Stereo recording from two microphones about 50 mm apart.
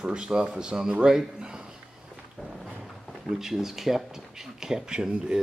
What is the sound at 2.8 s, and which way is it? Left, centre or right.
Speech, centre.